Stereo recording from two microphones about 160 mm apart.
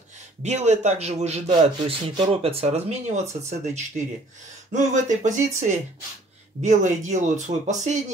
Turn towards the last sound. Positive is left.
turn(degrees=-50)  # may be behind; listen again after turning